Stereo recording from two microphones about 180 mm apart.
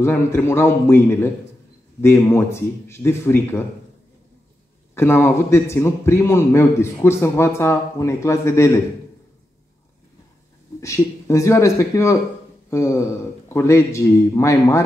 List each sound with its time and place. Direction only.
0.0 s a man's voice: 15° left (ahead or behind)
4.9 s a man's voice: 15° left (ahead or behind)
10.8 s a man's voice: 15° left (ahead or behind)